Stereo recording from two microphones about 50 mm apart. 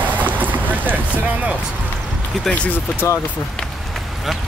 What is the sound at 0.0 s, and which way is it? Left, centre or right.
Boat, right.